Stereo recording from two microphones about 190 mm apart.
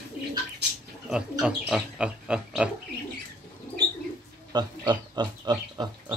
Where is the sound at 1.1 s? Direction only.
Centre (ahead or behind).